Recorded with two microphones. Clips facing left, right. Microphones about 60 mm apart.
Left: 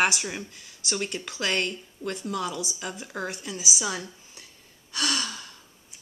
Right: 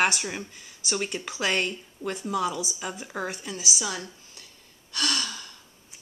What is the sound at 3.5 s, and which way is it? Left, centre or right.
Speech, centre.